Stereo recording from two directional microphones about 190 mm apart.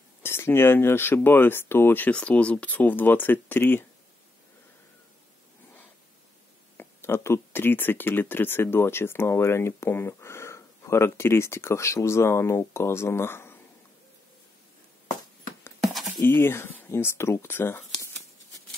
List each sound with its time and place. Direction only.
0.2 s speech: 10° left (ahead or behind)
6.8 s speech: 10° left (ahead or behind)
15.8 s a sound: centre (ahead or behind)
16.2 s speech: 10° left (ahead or behind)